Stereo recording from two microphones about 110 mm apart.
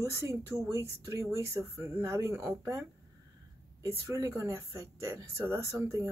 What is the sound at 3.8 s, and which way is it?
Speech, 25° right (ahead or behind).